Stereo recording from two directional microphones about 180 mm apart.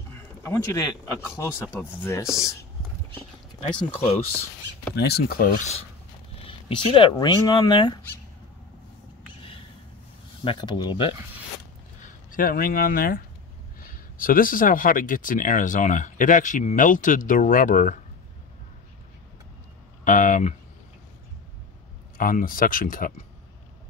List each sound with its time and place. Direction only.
0.4 s speech: 15° left (ahead or behind)
3.7 s speech: 35° left (ahead or behind)
4.9 s speech: 65° left (ahead or behind)
6.4 s speech: 25° left (ahead or behind)
10.4 s speech: 25° left (ahead or behind)
12.0 s speech: 50° left (ahead or behind)
20.1 s speech: 45° left (ahead or behind)
22.1 s speech: 50° left (ahead or behind)